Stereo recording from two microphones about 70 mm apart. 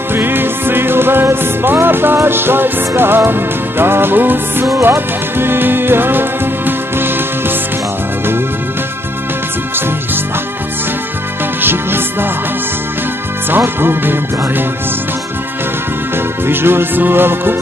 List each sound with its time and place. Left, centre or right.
0.1 s music: right
11.6 s music: right
13.5 s music: right
16.4 s music: right